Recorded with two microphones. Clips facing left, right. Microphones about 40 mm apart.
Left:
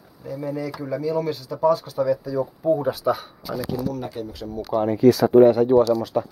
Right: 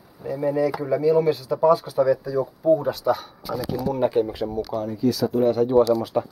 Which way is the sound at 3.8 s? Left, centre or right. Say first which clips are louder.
Right 7 dB; right.